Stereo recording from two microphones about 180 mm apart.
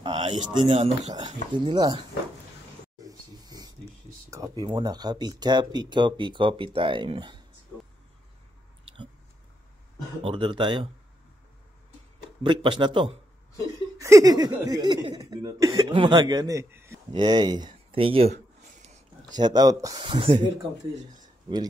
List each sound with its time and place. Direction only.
0.0 s speech: 30° right (ahead or behind)
3.0 s a sound: 20° right (ahead or behind)
4.3 s speech: 20° right (ahead or behind)
10.2 s speech: 30° right (ahead or behind)
12.4 s speech: 25° right (ahead or behind)
17.1 s speech: 25° right (ahead or behind)
19.3 s speech: 20° right (ahead or behind)
20.0 s speech: 30° right (ahead or behind)
21.2 s a sound: 25° right (ahead or behind)